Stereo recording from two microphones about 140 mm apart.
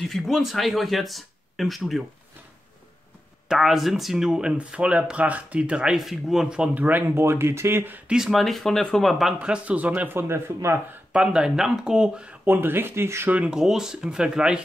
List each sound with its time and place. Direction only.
0.1 s speech: centre (ahead or behind)
3.4 s speech: centre (ahead or behind)
8.2 s speech: centre (ahead or behind); by 11.0 s 20° right (ahead or behind)
11.1 s speech: 5° right (ahead or behind)